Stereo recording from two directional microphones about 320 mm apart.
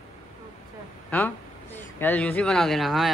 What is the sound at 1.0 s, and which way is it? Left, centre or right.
A woman's voice, centre.